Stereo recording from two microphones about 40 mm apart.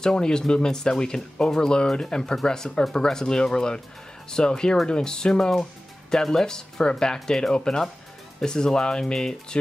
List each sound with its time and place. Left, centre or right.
0.0 s speech: centre